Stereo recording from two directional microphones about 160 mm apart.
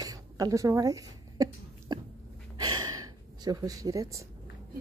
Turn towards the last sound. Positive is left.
turn(degrees=-20)  # may be behind; listen again after turning